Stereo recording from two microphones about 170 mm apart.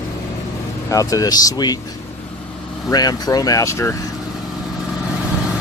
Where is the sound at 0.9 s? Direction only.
20° left (ahead or behind).